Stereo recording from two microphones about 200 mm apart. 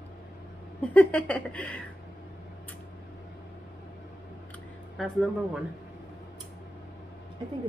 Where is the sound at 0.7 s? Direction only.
5° left (ahead or behind).